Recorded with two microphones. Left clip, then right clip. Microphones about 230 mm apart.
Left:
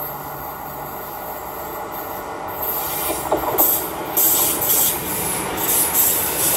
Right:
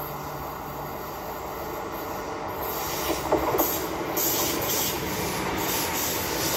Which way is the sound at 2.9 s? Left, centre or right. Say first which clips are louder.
Left 3 dB; left.